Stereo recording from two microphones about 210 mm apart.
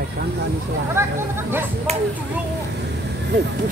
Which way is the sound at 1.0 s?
10° right (ahead or behind).